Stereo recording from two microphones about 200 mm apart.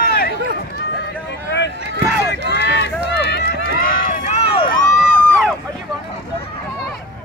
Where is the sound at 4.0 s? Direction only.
40° left (ahead or behind).